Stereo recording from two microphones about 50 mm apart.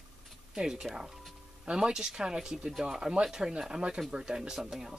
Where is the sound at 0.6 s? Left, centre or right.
Centre.